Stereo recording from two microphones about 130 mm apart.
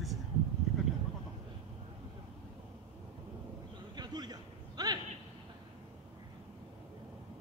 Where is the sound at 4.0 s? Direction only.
30° right (ahead or behind).